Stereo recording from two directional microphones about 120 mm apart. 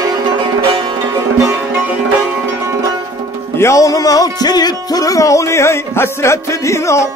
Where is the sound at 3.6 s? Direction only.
25° left (ahead or behind).